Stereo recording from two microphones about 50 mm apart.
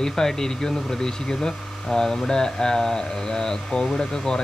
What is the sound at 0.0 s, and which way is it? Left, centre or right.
Speech, centre.